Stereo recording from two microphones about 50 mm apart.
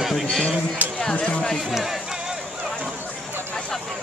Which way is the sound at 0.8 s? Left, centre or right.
Right.